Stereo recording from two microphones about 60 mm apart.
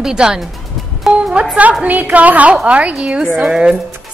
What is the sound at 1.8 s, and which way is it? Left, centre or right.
Speech, right.